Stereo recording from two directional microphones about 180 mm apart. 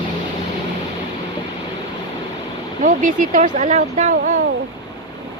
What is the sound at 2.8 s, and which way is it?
Speech, 45° right (ahead or behind).